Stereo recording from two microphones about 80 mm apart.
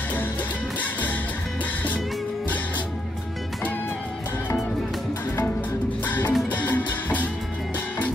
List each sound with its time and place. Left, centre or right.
6.0 s music: left